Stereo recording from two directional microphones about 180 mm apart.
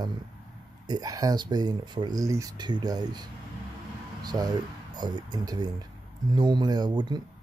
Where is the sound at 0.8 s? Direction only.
20° right (ahead or behind).